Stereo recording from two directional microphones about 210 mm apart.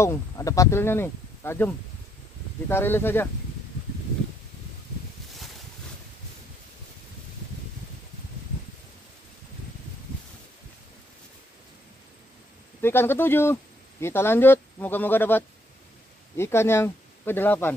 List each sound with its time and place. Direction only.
0.0 s speech: 15° left (ahead or behind)
2.7 s speech: 10° left (ahead or behind)
12.8 s speech: 10° left (ahead or behind)